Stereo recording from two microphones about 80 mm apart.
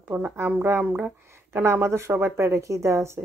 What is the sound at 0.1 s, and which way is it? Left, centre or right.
Speech, right.